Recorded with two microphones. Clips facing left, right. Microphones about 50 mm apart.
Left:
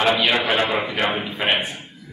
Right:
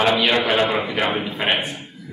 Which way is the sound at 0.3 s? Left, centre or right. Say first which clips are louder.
Right 1 dB; centre.